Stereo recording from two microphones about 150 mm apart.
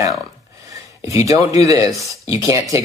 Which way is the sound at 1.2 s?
20° right (ahead or behind).